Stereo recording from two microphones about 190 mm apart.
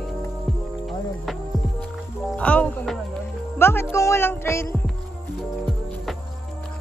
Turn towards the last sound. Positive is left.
turn(degrees=10)  # may be behind; listen again after turning